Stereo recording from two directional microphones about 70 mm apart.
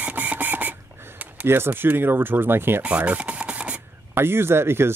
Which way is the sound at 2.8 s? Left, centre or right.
Right.